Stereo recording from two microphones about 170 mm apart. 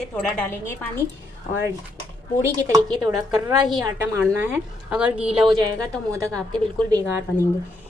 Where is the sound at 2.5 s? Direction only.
20° right (ahead or behind).